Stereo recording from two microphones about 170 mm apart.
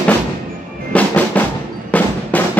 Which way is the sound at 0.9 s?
10° left (ahead or behind).